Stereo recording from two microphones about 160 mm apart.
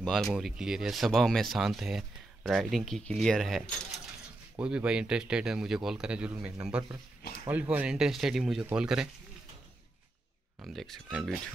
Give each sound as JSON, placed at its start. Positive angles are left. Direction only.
{"t": 0.0, "sound": "speech", "side_deg": 0}
{"t": 10.7, "sound": "speech", "side_deg": 0}